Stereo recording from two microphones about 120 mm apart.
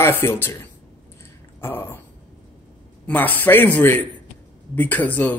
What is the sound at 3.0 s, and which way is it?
A man's voice, 15° left (ahead or behind).